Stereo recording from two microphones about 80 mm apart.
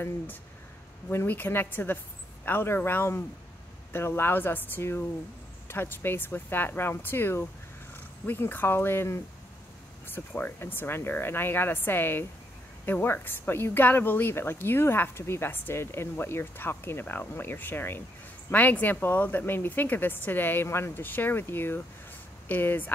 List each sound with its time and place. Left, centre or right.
1.1 s speech: left